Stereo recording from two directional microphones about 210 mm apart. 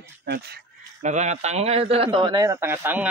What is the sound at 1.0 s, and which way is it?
A man's voice, 35° right (ahead or behind).